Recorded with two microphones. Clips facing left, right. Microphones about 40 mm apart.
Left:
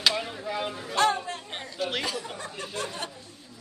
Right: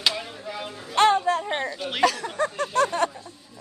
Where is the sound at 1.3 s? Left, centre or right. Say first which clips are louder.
Right 13 dB; right.